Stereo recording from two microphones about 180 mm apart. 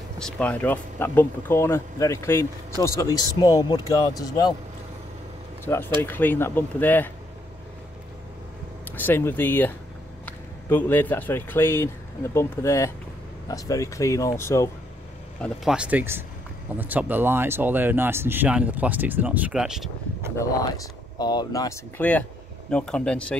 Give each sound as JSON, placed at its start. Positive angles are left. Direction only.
{"t": 0.2, "sound": "speech", "side_deg": 10}
{"t": 5.9, "sound": "speech", "side_deg": 10}
{"t": 8.9, "sound": "speech", "side_deg": 10}
{"t": 15.4, "sound": "speech", "side_deg": -5}
{"t": 20.3, "sound": "speech", "side_deg": 20}